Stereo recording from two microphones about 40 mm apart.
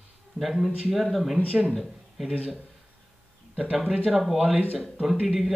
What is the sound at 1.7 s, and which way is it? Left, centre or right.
Speech, centre.